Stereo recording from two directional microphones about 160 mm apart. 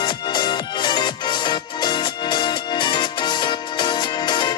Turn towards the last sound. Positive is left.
turn(degrees=25)  # may be behind; listen again after turning